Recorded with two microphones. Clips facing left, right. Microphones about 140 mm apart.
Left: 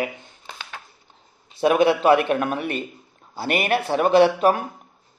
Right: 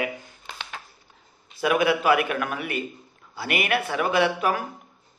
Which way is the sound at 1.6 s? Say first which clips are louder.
Left 4 dB; 30° left (ahead or behind).